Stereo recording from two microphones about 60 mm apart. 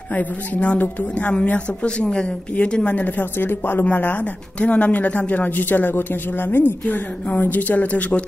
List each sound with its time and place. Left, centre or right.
0.1 s speech: left